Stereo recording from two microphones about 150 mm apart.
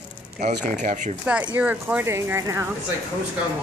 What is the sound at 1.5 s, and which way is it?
Speech, 10° right (ahead or behind).